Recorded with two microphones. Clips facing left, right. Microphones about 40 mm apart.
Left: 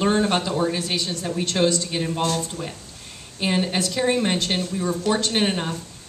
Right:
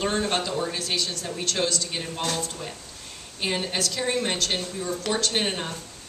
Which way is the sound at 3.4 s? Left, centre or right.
Centre.